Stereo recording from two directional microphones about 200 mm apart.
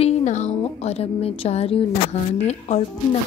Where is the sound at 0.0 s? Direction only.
35° left (ahead or behind).